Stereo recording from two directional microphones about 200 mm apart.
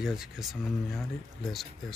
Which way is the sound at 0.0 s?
5° right (ahead or behind).